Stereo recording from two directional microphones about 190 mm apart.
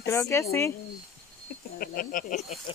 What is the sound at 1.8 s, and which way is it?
Speech, 50° left (ahead or behind).